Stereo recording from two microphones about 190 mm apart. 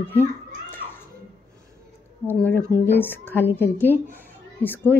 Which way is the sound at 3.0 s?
10° left (ahead or behind).